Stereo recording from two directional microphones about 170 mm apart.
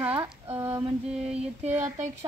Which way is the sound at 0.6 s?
15° right (ahead or behind).